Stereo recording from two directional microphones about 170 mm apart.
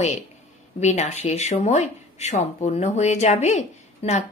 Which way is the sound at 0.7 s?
40° left (ahead or behind).